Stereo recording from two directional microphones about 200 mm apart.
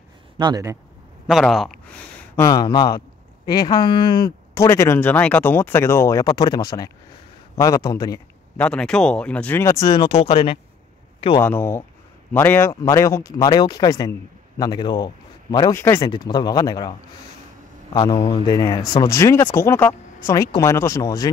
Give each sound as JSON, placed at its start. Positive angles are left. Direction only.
{"t": 0.4, "sound": "speech", "side_deg": -20}
{"t": 1.2, "sound": "speech", "side_deg": 0}
{"t": 2.4, "sound": "speech", "side_deg": 20}
{"t": 8.5, "sound": "speech", "side_deg": 5}
{"t": 11.4, "sound": "a man's voice", "side_deg": 10}
{"t": 15.8, "sound": "speech", "side_deg": 10}
{"t": 17.9, "sound": "speech", "side_deg": 25}